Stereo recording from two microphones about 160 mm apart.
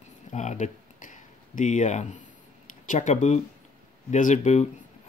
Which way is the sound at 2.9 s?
50° left (ahead or behind).